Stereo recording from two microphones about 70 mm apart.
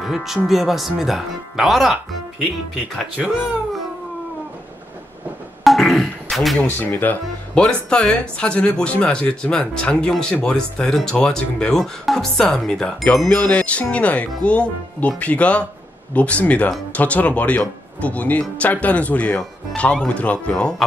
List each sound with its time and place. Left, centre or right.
0.0 s speech: centre
5.6 s a sound: centre
6.9 s speech: left
7.5 s wind chime: centre
16.1 s speech: centre